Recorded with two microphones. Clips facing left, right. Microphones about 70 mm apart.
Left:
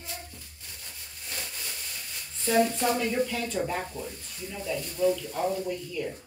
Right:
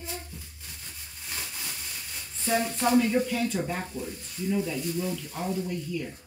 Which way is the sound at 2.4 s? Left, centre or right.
Centre.